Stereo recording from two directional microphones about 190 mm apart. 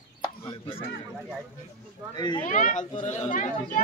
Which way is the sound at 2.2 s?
25° left (ahead or behind).